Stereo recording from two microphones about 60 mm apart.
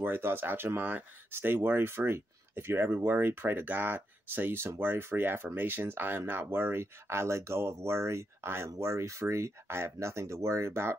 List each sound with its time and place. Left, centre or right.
0.0 s speech: right